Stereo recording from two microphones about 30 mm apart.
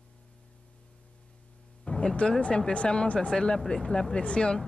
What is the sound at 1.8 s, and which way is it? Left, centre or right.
Music, left.